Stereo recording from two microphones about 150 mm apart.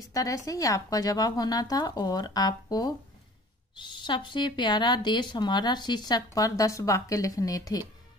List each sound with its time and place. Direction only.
0.1 s speech: 20° left (ahead or behind)